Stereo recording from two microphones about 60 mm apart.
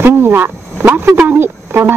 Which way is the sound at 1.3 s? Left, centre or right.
Right.